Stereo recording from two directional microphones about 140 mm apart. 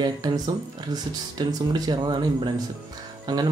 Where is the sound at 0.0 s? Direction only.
30° right (ahead or behind).